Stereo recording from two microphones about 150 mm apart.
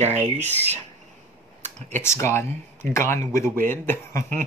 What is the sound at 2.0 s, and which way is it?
Speech, 20° left (ahead or behind).